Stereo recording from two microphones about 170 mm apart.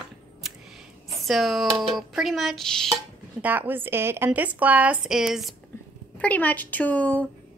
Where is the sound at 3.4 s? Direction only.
10° right (ahead or behind).